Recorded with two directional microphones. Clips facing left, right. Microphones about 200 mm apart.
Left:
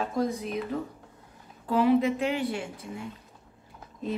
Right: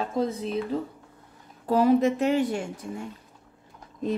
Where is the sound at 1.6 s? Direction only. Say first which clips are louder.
Right 2 dB; 40° right (ahead or behind).